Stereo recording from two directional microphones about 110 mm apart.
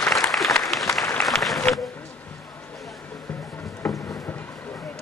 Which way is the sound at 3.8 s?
10° left (ahead or behind).